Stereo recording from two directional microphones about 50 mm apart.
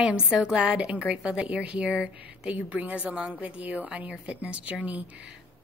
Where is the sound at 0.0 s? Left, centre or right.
Centre.